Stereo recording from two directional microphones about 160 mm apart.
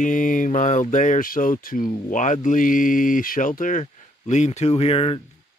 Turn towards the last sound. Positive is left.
turn(degrees=35)  # may be behind; listen again after turning